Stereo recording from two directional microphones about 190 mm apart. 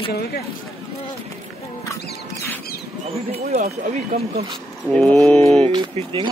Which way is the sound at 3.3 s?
35° right (ahead or behind).